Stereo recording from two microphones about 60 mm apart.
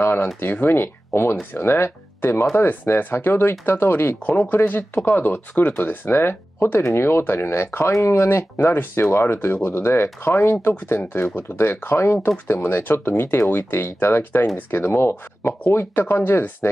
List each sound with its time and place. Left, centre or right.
0.0 s speech: left